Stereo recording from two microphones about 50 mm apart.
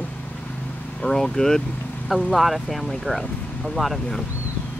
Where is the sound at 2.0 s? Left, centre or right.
Centre.